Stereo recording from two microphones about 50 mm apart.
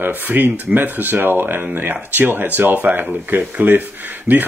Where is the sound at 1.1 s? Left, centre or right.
Right.